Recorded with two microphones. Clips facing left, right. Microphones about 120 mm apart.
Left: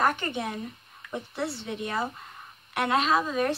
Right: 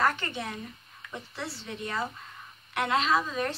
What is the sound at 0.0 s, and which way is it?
Speech, 15° left (ahead or behind).